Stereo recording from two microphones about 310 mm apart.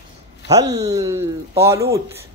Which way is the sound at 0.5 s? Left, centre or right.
Centre.